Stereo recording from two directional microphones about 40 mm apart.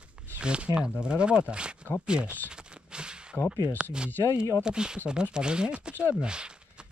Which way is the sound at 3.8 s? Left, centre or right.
Right.